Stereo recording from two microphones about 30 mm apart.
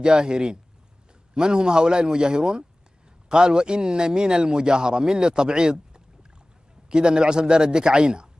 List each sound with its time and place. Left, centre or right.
0.0 s a man's voice: right